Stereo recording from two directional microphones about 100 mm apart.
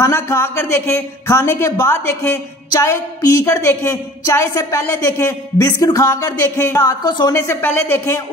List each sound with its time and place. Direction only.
0.0 s speech: 25° left (ahead or behind)
7.1 s a woman's voice: 45° left (ahead or behind)
7.3 s speech: 25° left (ahead or behind)